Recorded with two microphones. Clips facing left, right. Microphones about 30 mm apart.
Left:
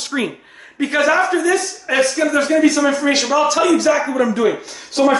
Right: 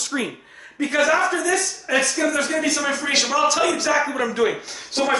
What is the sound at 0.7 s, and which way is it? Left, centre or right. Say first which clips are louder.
Speech: left 3 dB; left.